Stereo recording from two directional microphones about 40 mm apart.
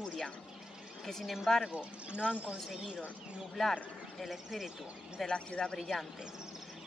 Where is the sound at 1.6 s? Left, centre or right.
Right.